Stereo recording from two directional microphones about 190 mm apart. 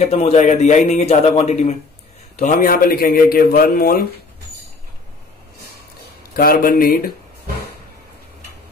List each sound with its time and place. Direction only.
0.1 s a man's voice: 30° left (ahead or behind); by 4.0 s 50° left (ahead or behind)
6.3 s a man's voice: 50° left (ahead or behind)